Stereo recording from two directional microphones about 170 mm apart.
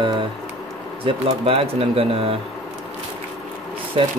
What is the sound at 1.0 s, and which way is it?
Speech, 35° right (ahead or behind).